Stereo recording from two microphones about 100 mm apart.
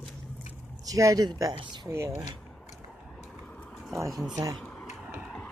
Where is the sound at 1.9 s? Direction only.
25° right (ahead or behind).